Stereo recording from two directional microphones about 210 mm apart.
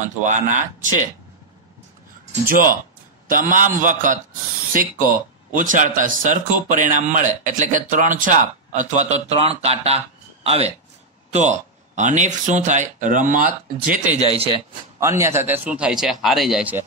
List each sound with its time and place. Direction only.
0.0 s a man's voice: 35° right (ahead or behind)
2.4 s a man's voice: 40° right (ahead or behind)
15.0 s a man's voice: 15° right (ahead or behind)